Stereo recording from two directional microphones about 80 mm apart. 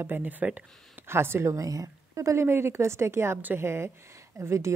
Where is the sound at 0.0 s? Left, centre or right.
Right.